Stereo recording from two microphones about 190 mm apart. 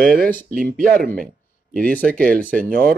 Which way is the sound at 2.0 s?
50° right (ahead or behind).